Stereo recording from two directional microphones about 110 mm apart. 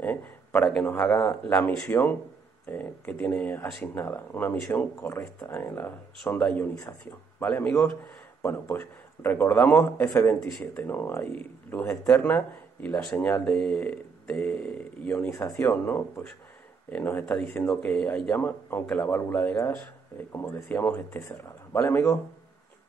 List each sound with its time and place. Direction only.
0.0 s a sound: 15° left (ahead or behind)
0.9 s speech: 5° left (ahead or behind)
1.9 s a man's voice: 20° left (ahead or behind)